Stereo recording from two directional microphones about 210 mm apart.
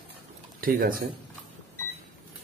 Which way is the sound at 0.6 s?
40° right (ahead or behind).